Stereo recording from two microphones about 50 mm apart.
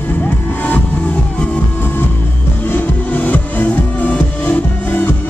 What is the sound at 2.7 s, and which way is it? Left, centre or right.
Music, left.